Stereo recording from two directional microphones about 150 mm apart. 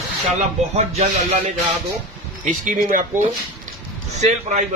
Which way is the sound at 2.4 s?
65° right (ahead or behind).